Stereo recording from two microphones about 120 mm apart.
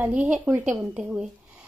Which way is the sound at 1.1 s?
5° right (ahead or behind).